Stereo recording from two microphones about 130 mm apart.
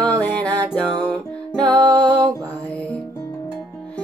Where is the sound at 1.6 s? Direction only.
30° right (ahead or behind).